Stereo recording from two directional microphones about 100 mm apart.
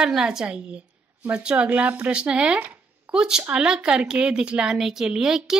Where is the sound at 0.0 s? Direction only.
5° right (ahead or behind).